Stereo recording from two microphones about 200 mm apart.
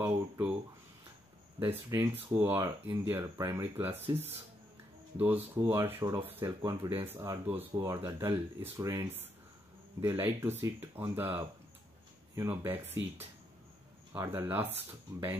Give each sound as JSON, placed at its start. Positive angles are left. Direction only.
{"t": 0.0, "sound": "a sound", "side_deg": -10}
{"t": 1.6, "sound": "speech", "side_deg": -10}
{"t": 14.1, "sound": "speech", "side_deg": -15}